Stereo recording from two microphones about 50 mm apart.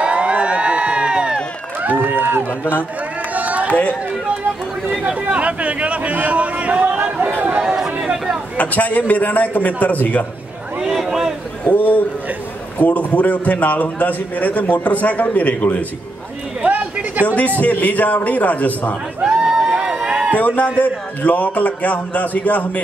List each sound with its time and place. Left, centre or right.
0.0 s crowd: right
1.8 s a sound: right
3.3 s run: right
3.6 s speech: left
5.3 s speech: right
7.6 s speech: centre
8.5 s a man's voice: left
10.8 s a sound: centre
11.6 s a man's voice: left
16.6 s a sound: right
17.6 s a man's voice: left
19.2 s crowd: centre
20.3 s a man's voice: left